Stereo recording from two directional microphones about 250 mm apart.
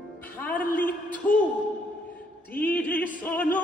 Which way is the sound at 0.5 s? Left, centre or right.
Centre.